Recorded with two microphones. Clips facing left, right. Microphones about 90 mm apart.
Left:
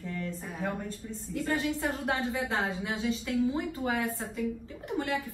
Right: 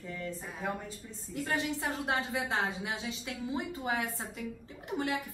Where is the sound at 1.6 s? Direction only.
25° right (ahead or behind).